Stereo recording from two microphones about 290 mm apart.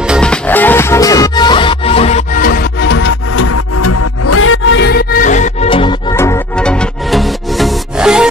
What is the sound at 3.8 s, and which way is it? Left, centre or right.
Music, left.